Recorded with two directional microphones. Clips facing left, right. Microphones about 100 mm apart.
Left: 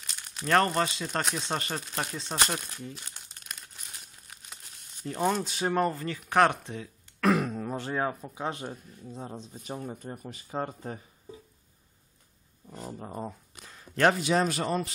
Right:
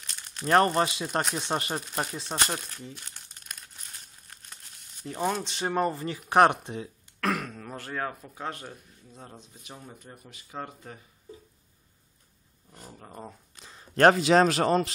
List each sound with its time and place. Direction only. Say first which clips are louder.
0.0 s crumpling: right 1 dB; 5° left (ahead or behind)
0.7 s speech: right 2 dB; 15° right (ahead or behind)
3.1 s crumpling: even; 5° left (ahead or behind)
5.0 s speech: left 1 dB; centre (ahead or behind)
5.9 s speech: right 3 dB; 20° right (ahead or behind)
7.2 s speech: left 5 dB; 10° left (ahead or behind); by 9.5 s 25° left (ahead or behind)
9.5 s speech: left 8 dB; 40° left (ahead or behind)
9.8 s speech: left 8 dB; 50° left (ahead or behind)
10.0 s speech: left 8 dB; 40° left (ahead or behind)
13.1 s speech: left 5 dB; 5° left (ahead or behind)
14.1 s speech: right 6 dB; 85° right